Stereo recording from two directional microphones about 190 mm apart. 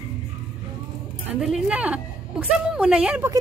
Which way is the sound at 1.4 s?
5° right (ahead or behind).